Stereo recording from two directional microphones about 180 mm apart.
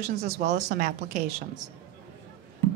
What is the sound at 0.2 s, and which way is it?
Speech, 65° right (ahead or behind).